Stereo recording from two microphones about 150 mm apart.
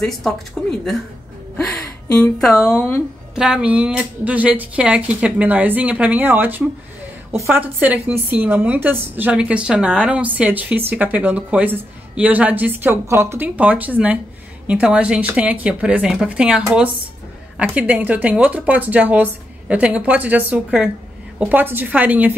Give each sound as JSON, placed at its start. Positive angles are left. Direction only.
{"t": 0.0, "sound": "speech", "side_deg": 0}
{"t": 2.3, "sound": "speech", "side_deg": 0}
{"t": 2.7, "sound": "speech", "side_deg": 15}
{"t": 3.3, "sound": "a woman's voice", "side_deg": -5}